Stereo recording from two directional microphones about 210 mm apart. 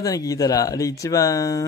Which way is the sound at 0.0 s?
15° left (ahead or behind).